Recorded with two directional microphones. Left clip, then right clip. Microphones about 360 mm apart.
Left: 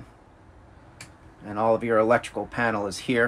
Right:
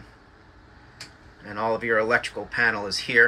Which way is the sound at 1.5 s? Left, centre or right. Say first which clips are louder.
Left 2 dB; centre.